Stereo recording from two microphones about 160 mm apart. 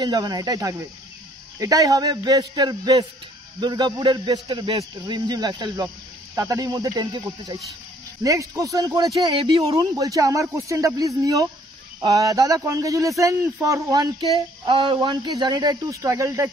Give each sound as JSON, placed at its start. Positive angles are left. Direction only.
{"t": 0.0, "sound": "a man's voice", "side_deg": -25}
{"t": 9.2, "sound": "a man's voice", "side_deg": -35}
{"t": 9.8, "sound": "a man's voice", "side_deg": -20}
{"t": 14.7, "sound": "a man's voice", "side_deg": -35}
{"t": 15.0, "sound": "a man's voice", "side_deg": -25}